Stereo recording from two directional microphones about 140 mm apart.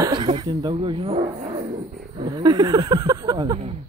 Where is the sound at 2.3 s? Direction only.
30° right (ahead or behind).